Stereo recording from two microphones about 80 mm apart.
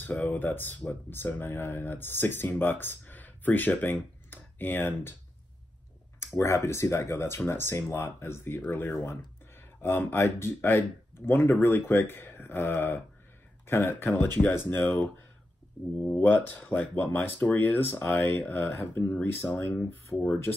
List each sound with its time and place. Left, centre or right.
0.0 s speech: left
6.1 s speech: left
16.2 s speech: left